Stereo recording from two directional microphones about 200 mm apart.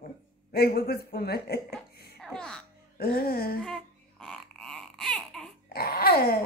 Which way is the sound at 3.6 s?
5° left (ahead or behind).